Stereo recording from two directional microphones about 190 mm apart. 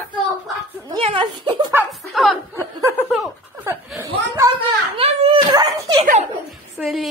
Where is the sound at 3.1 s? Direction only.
Centre (ahead or behind).